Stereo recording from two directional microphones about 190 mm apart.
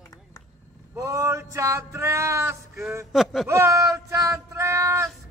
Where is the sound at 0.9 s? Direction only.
15° right (ahead or behind).